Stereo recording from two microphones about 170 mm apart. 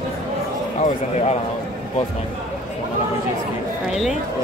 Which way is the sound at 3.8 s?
Centre (ahead or behind).